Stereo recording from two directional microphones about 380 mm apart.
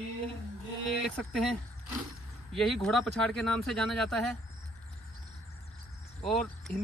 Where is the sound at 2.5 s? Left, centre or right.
Centre.